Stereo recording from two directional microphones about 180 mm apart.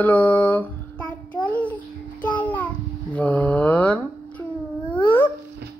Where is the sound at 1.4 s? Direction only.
10° left (ahead or behind).